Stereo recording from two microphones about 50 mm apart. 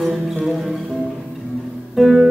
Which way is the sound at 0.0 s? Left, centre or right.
Centre.